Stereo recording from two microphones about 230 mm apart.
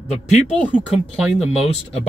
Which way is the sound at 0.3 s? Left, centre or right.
Centre.